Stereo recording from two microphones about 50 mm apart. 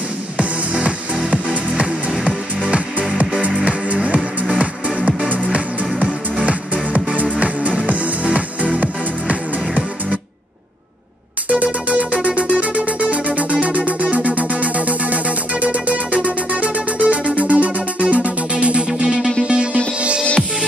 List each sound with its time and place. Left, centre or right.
0.4 s music: right
6.3 s music: right
11.4 s music: right